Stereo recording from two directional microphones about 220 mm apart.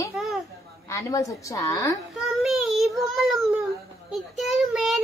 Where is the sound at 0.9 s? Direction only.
15° left (ahead or behind).